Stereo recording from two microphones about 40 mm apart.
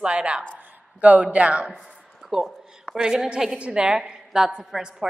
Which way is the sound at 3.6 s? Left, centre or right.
Right.